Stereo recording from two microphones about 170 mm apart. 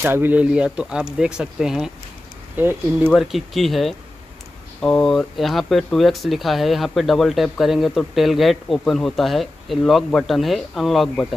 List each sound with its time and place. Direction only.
0.0 s speech: 10° right (ahead or behind)
3.1 s speech: centre (ahead or behind)